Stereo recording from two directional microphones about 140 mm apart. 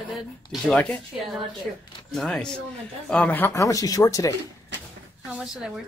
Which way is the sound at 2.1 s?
5° left (ahead or behind).